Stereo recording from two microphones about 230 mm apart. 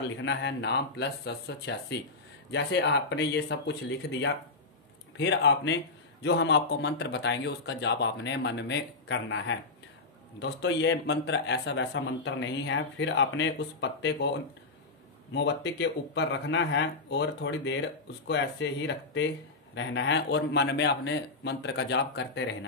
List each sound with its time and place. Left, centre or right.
0.2 s a man's voice: left
15.3 s a man's voice: left